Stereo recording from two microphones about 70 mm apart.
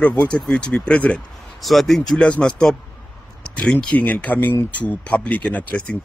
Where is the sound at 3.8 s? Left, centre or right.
Left.